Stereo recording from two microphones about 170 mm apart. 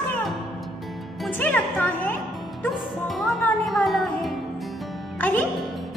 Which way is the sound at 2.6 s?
Centre (ahead or behind).